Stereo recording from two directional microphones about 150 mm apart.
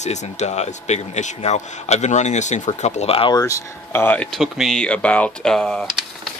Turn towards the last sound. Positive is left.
turn(degrees=5)  # may be behind; listen again after turning